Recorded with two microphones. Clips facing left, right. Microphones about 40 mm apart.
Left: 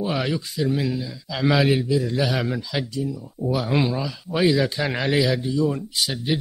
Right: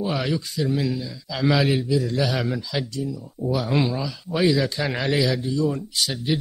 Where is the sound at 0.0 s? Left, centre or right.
Centre.